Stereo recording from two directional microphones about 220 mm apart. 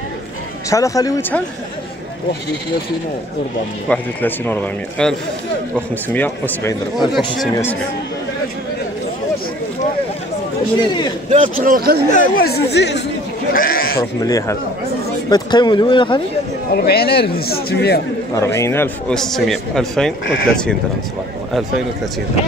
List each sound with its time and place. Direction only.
0.7 s speech: 15° left (ahead or behind)
3.9 s speech: 5° left (ahead or behind)
11.2 s a man's voice: 35° right (ahead or behind)
12.1 s speech: 45° left (ahead or behind)
14.2 s speech: 15° left (ahead or behind)
16.7 s speech: 45° left (ahead or behind)
18.3 s a man's voice: 15° left (ahead or behind)